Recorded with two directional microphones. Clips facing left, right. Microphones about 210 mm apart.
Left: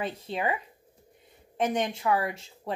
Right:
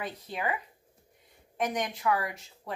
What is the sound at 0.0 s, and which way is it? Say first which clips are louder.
Speech: left 4 dB; 25° left (ahead or behind).